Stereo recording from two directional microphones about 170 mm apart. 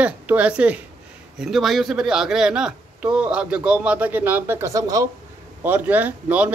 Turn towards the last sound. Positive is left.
turn(degrees=-10)  # may be behind; listen again after turning